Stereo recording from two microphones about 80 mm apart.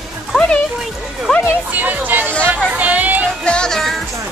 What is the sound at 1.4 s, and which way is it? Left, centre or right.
Music, right.